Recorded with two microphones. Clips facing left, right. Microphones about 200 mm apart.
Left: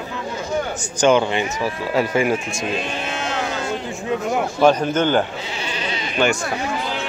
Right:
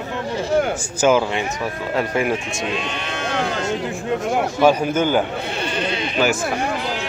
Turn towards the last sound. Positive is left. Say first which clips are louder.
# even
turn(degrees=-5)  # may be behind; listen again after turning